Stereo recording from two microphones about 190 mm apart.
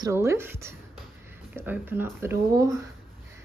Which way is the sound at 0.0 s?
15° right (ahead or behind).